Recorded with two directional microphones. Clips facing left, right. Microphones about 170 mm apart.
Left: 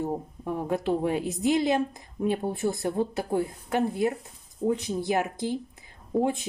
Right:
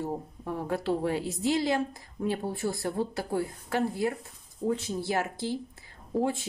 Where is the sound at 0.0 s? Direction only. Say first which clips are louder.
Left 3 dB; 15° left (ahead or behind).